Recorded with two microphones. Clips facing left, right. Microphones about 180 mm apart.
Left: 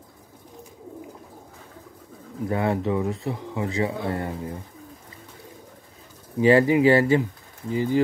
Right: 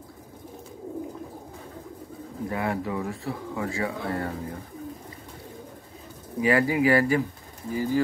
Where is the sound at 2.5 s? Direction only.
25° left (ahead or behind).